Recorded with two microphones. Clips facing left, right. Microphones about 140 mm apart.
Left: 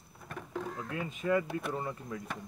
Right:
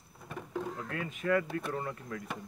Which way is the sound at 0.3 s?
5° right (ahead or behind).